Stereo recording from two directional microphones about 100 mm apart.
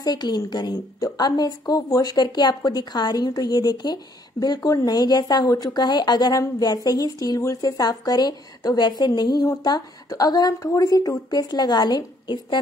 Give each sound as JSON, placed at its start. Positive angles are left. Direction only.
{"t": 0.0, "sound": "a woman's voice", "side_deg": 45}